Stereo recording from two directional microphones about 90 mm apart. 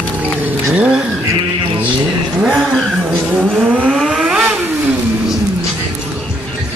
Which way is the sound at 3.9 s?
5° right (ahead or behind).